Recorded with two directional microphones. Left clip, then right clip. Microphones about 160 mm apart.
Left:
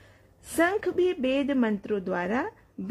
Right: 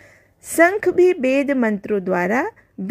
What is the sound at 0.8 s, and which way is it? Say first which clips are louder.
Speech: right 10 dB; 30° right (ahead or behind).